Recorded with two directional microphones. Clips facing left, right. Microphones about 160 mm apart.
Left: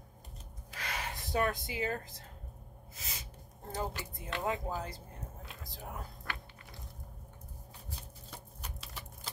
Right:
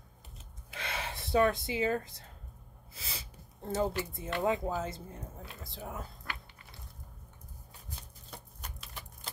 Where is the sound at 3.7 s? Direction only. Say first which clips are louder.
Right 7 dB; 20° right (ahead or behind).